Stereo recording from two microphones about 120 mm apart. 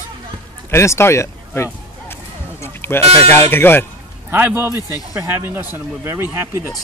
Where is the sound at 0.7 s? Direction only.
20° left (ahead or behind).